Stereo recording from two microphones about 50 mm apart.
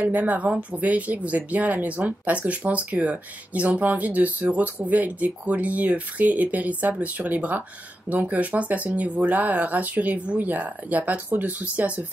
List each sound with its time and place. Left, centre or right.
0.0 s speech: right